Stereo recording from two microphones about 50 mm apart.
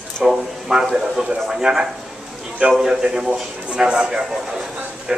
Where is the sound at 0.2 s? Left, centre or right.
Centre.